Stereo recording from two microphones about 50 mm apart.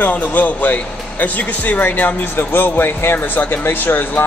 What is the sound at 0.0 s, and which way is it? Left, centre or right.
A man's voice, left.